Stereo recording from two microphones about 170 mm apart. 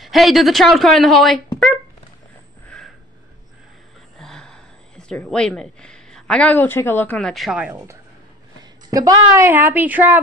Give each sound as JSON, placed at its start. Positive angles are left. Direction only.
{"t": 0.0, "sound": "speech", "side_deg": 0}
{"t": 4.2, "sound": "speech", "side_deg": 5}
{"t": 8.9, "sound": "a woman's voice", "side_deg": -20}